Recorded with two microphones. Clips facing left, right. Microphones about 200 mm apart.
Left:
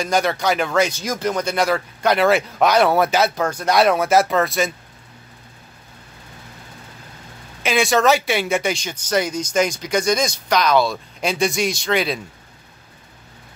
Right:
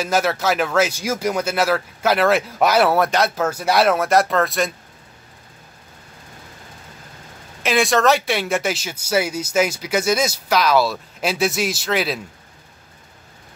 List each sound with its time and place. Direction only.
0.0 s speech: 5° right (ahead or behind)
7.6 s speech: centre (ahead or behind)